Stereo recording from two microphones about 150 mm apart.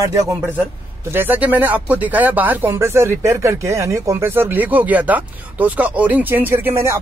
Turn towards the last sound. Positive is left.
turn(degrees=-15)  # may be behind; listen again after turning